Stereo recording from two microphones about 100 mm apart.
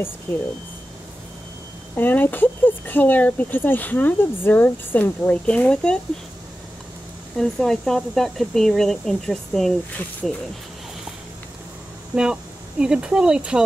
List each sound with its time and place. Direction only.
0.3 s speech: 25° left (ahead or behind)
2.0 s speech: 20° left (ahead or behind)
7.3 s speech: 5° left (ahead or behind)
12.2 s speech: 10° right (ahead or behind)